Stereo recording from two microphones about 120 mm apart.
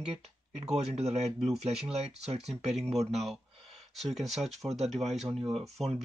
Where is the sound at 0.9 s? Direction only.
60° right (ahead or behind).